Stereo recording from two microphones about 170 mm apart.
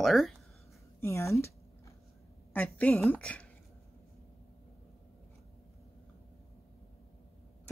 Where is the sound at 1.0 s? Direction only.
15° left (ahead or behind).